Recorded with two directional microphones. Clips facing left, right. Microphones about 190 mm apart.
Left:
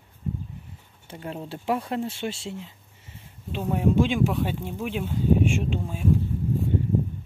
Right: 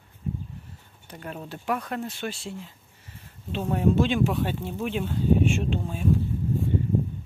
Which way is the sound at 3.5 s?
10° left (ahead or behind).